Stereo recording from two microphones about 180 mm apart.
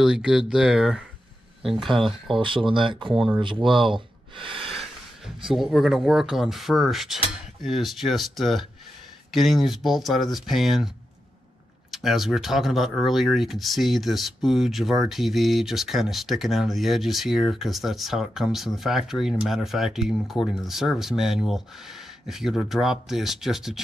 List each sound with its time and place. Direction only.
0.0 s speech: 5° right (ahead or behind)
2.7 s speech: 25° right (ahead or behind)
4.4 s snort: 30° right (ahead or behind)
5.5 s speech: centre (ahead or behind)
11.9 s speech: centre (ahead or behind)